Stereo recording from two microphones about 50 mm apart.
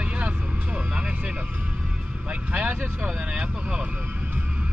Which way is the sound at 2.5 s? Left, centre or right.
Right.